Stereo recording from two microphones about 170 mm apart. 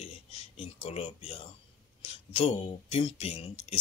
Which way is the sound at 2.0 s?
35° left (ahead or behind).